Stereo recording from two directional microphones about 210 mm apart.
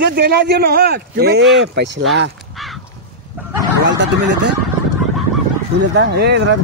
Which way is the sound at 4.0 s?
60° right (ahead or behind).